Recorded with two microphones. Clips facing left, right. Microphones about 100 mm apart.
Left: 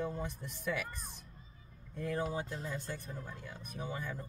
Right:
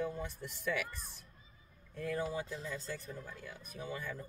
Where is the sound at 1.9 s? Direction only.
20° left (ahead or behind).